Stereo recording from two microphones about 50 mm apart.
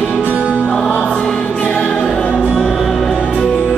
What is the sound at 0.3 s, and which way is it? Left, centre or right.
Music, right.